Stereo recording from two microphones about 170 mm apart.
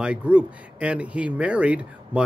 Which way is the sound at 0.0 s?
5° right (ahead or behind).